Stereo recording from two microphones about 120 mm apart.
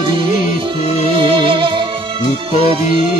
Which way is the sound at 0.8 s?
60° left (ahead or behind).